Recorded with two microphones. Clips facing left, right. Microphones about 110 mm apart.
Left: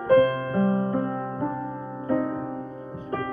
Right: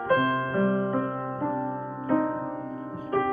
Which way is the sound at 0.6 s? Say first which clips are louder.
Left 2 dB; 25° left (ahead or behind).